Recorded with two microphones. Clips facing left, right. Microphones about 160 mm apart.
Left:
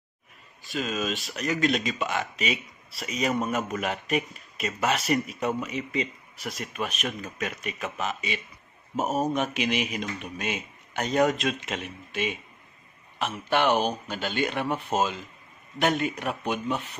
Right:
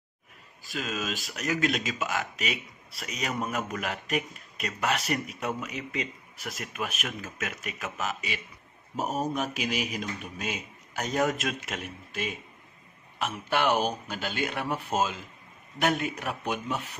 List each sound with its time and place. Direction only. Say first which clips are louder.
0.7 s speech: left 4 dB; centre (ahead or behind)
8.9 s speech: left 4 dB; 20° left (ahead or behind)
9.7 s speech: left 3 dB; centre (ahead or behind)
13.2 s speech: left 3 dB; 5° right (ahead or behind)